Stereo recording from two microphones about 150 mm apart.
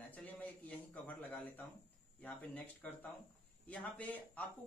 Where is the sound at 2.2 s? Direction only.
10° left (ahead or behind).